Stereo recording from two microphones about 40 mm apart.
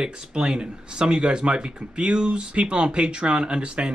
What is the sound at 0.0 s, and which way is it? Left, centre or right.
Speech, right.